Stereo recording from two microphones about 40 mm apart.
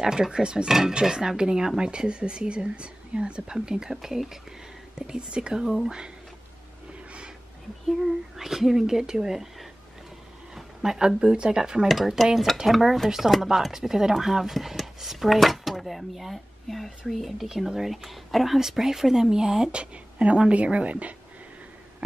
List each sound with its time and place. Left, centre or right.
0.0 s speech: centre
0.7 s speech: centre; by 3.4 s right
3.4 s speech: centre
4.9 s speech: right
7.8 s speech: centre
11.9 s speech: centre
17.5 s speech: centre; by 21.1 s right